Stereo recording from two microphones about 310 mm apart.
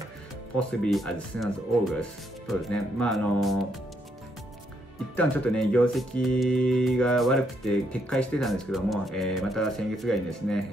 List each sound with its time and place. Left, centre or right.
0.6 s speech: centre
5.1 s speech: centre